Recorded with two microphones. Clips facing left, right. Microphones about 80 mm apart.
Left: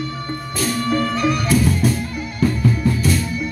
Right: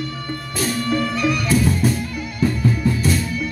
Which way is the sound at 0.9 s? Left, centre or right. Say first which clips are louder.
Left 2 dB; left.